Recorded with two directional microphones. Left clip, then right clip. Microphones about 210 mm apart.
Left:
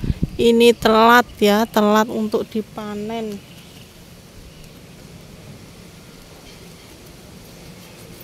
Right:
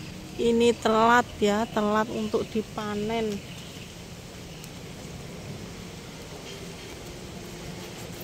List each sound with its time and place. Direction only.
0.4 s speech: 45° left (ahead or behind)